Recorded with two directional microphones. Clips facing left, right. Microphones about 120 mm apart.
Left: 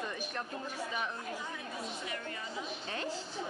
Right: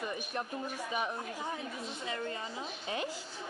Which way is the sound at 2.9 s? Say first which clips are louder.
Right 3 dB; 15° right (ahead or behind).